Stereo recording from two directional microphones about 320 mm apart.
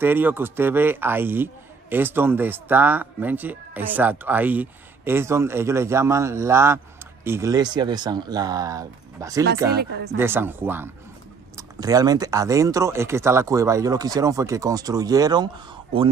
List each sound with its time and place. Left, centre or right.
0.0 s a man's voice: centre
9.8 s speech: right
10.1 s a man's voice: centre